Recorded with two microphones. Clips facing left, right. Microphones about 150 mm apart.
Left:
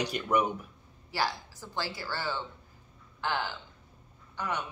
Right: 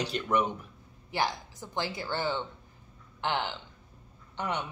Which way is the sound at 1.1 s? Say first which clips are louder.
Right 1 dB; 20° right (ahead or behind).